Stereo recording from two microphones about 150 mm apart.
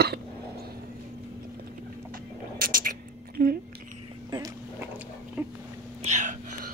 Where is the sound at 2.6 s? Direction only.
70° right (ahead or behind).